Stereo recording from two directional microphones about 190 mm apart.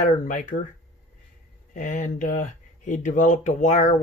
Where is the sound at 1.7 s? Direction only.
45° left (ahead or behind).